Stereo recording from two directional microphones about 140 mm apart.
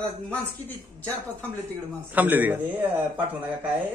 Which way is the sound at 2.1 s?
10° right (ahead or behind).